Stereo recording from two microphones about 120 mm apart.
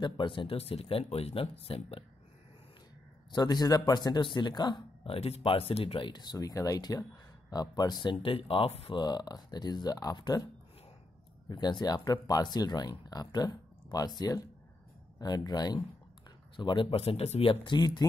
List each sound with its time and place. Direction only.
0.0 s speech: 45° left (ahead or behind)
3.3 s speech: 35° left (ahead or behind); by 8.9 s 55° left (ahead or behind)
8.9 s speech: 35° left (ahead or behind)